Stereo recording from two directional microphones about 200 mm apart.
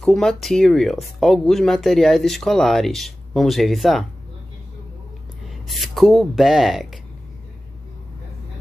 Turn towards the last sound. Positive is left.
turn(degrees=0)  # may be behind; listen again after turning